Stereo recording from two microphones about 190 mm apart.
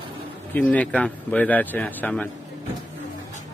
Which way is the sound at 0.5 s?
10° left (ahead or behind).